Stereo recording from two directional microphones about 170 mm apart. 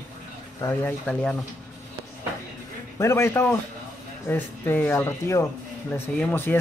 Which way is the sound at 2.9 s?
15° left (ahead or behind).